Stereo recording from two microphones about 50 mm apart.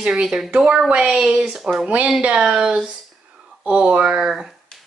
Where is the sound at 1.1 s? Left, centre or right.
Centre.